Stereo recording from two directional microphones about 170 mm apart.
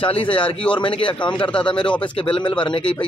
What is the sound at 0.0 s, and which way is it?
A man's voice, 30° left (ahead or behind).